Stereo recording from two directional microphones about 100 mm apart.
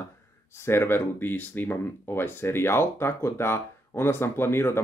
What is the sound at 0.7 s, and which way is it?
Speech, 25° left (ahead or behind).